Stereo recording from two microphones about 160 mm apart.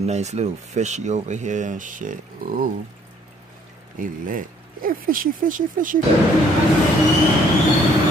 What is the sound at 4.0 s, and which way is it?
Speech, 60° right (ahead or behind).